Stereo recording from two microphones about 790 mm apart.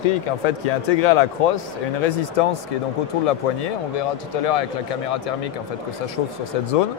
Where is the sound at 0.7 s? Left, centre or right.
Left.